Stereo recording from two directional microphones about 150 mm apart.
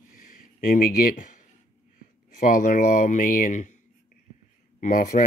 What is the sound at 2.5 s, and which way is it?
Speech, 60° left (ahead or behind).